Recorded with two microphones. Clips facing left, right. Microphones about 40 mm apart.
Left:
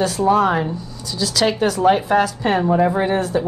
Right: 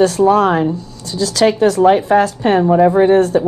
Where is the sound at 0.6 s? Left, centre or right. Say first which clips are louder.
Right 6 dB; right.